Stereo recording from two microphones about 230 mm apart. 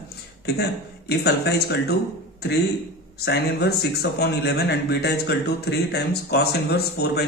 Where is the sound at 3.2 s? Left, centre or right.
Left.